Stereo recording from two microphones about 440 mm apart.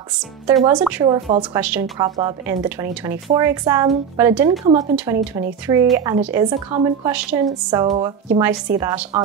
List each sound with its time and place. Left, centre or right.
0.5 s a woman's voice: centre